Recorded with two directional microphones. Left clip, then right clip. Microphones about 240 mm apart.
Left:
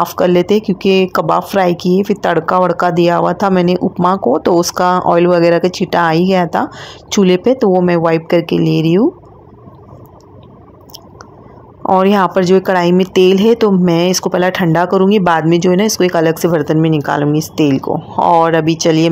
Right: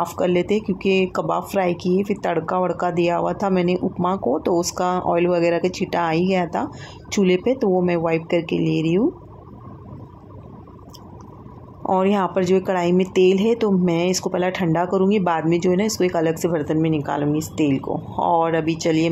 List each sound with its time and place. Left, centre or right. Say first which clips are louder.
0.0 s speech: left 8 dB; left
11.8 s speech: left 9 dB; left